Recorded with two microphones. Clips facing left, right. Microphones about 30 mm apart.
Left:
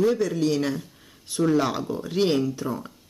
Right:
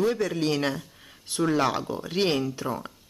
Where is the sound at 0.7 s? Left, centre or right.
Centre.